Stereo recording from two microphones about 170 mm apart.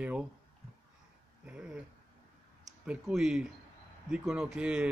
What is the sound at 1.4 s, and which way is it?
Speech, 5° right (ahead or behind).